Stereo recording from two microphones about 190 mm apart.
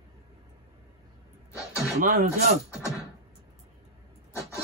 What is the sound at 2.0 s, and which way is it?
Speech, 50° right (ahead or behind).